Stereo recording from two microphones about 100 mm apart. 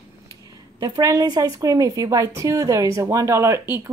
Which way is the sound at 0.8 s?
35° right (ahead or behind).